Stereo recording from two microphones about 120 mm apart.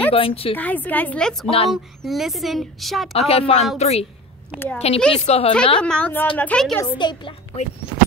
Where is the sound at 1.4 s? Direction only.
55° left (ahead or behind).